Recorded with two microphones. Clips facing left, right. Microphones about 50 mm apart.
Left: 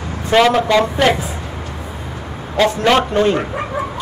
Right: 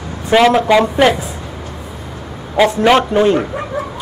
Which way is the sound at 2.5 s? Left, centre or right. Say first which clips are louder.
Right 3 dB; centre.